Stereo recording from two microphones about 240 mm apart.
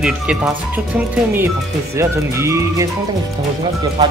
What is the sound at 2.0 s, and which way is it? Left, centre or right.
Speech, centre.